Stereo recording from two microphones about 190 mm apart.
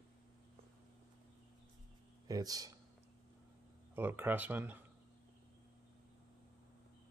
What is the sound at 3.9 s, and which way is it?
Speech, 10° right (ahead or behind).